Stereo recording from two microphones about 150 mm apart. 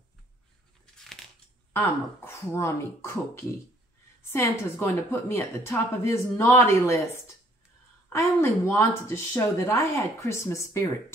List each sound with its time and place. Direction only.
0.9 s a sound: centre (ahead or behind)
1.7 s a woman's voice: 15° left (ahead or behind)
8.1 s speech: 15° left (ahead or behind)